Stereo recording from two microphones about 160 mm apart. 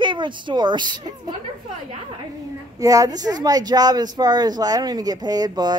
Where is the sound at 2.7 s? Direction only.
20° right (ahead or behind).